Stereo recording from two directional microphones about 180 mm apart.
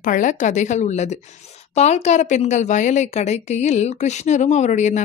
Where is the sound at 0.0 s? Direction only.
45° left (ahead or behind).